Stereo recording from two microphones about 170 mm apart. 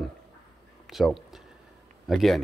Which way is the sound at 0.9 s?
Centre (ahead or behind).